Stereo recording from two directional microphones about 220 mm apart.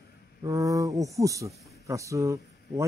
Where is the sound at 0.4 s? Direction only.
15° right (ahead or behind).